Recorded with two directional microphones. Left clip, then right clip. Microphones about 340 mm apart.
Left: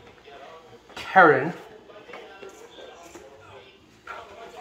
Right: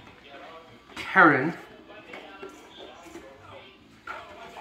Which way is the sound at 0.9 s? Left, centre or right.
Centre.